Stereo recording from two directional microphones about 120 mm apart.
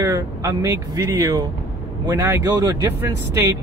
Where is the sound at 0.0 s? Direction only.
30° right (ahead or behind).